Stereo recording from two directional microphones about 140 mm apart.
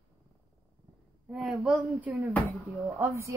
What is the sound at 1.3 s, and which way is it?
A woman's voice, centre (ahead or behind).